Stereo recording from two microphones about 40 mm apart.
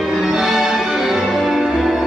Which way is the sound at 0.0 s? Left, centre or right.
Centre.